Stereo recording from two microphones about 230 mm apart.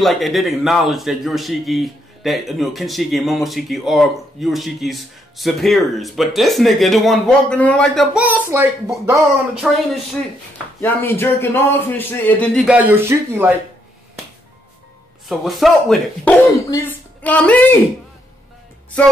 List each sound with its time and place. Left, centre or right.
0.0 s a man's voice: centre
9.6 s a man's voice: centre
12.6 s speech: centre
15.2 s a man's voice: centre
16.5 s a woman's voice: centre